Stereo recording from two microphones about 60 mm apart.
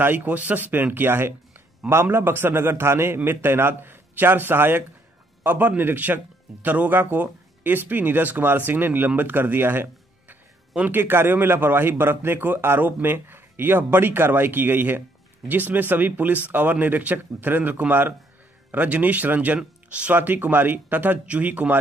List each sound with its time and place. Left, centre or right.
0.0 s a man's voice: right